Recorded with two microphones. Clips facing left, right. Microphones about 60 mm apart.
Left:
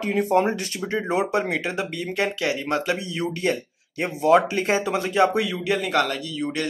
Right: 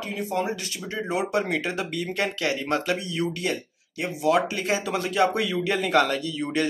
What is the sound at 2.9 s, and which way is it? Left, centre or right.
Speech, centre.